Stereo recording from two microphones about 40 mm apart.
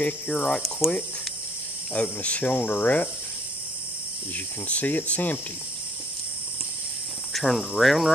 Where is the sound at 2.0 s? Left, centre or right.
Left.